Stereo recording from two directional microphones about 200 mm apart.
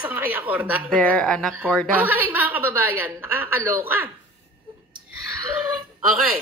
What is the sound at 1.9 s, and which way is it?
A woman's voice, 10° right (ahead or behind).